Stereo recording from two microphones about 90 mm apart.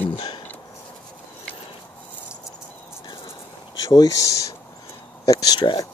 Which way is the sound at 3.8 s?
40° left (ahead or behind).